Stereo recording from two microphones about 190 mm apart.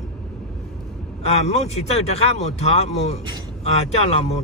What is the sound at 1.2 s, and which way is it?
A man's voice, 35° left (ahead or behind).